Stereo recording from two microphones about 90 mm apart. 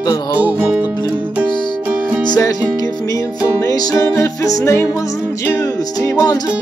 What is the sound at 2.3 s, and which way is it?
Music, 45° left (ahead or behind).